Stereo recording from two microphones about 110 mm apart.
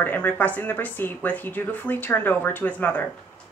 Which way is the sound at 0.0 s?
15° left (ahead or behind).